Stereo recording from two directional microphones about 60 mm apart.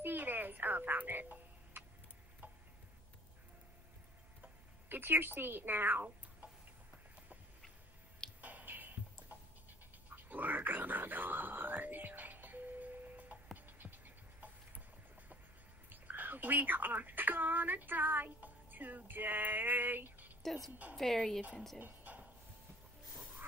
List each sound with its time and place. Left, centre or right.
0.0 s music: right
4.4 s speech: right
8.4 s music: right
10.1 s a sound: right
15.9 s speech: right
20.4 s a woman's voice: centre
21.7 s a sound: right